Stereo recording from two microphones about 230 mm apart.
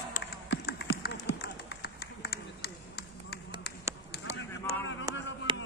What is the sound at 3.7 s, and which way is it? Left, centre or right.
Duck, left.